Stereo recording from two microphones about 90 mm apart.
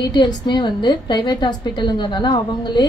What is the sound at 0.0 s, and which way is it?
A woman's voice, 55° left (ahead or behind).